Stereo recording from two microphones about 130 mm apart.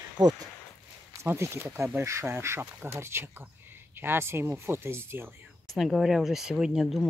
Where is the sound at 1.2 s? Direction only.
20° right (ahead or behind).